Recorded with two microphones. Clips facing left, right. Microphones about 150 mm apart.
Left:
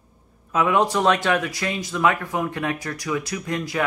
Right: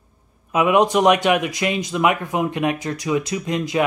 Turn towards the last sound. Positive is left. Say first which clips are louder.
# right 4 dB
turn(degrees=-20)  # may be behind; listen again after turning